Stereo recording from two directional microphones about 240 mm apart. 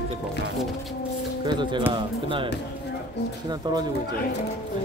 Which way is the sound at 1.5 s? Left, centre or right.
Centre.